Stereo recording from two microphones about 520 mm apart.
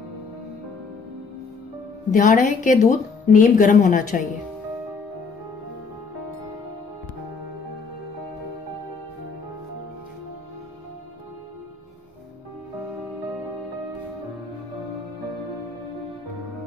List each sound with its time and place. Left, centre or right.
2.0 s speech: centre